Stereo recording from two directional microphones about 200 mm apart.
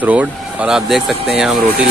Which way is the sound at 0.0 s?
5° right (ahead or behind).